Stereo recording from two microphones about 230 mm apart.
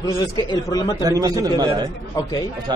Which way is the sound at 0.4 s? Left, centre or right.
Centre.